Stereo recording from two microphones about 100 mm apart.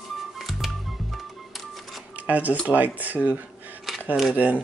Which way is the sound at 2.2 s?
15° right (ahead or behind).